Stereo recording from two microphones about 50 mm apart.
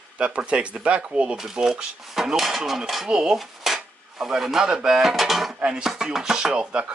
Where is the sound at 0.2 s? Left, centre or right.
Right; by 5.6 s centre.